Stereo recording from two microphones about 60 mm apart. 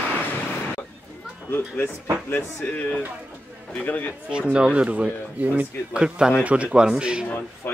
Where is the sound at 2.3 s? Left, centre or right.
Left.